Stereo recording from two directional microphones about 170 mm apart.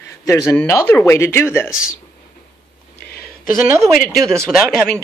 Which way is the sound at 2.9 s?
65° left (ahead or behind).